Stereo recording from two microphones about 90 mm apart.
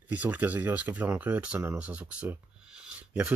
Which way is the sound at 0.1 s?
20° right (ahead or behind).